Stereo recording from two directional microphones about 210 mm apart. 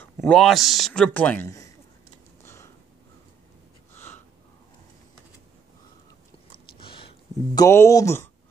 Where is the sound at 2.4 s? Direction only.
10° left (ahead or behind).